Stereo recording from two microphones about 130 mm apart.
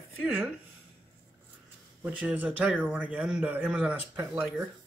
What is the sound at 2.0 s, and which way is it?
A man's voice, 10° right (ahead or behind).